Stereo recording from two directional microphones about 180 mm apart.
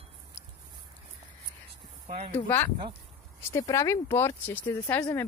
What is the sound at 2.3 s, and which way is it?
Speech, 10° left (ahead or behind).